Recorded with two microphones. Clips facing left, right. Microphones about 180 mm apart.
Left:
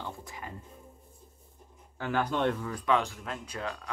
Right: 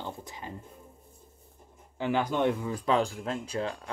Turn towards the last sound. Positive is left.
turn(degrees=-30)  # may be behind; listen again after turning